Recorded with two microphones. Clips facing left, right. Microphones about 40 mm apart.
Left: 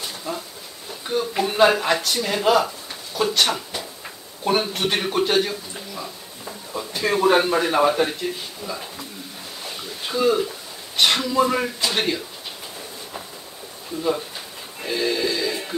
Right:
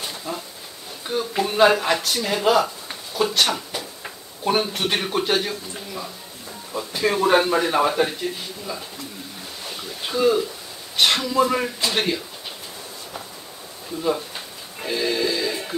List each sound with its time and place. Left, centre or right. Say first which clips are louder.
0.3 s speech: left 1 dB; centre
9.7 s a sound: even; centre
11.0 s speech: even; centre
14.8 s music: even; centre